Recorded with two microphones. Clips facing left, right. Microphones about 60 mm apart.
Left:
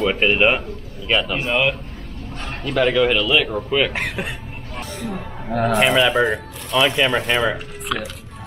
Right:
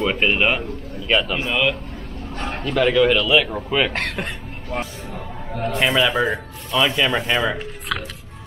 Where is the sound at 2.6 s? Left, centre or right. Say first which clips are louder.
Even; centre.